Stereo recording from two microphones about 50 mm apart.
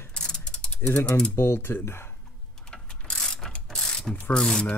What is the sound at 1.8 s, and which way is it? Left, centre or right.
Speech, left.